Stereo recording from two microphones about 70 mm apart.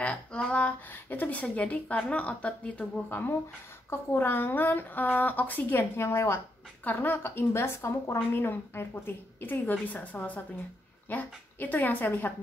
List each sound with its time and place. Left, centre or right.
0.0 s a sound: centre
0.9 s a woman's voice: left
3.1 s a woman's voice: left